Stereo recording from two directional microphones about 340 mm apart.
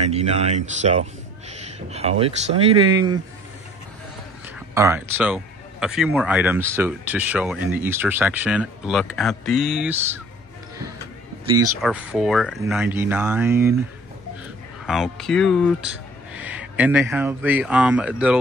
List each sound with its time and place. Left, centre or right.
0.1 s speech: centre
4.7 s speech: centre
11.4 s speech: centre
14.9 s speech: centre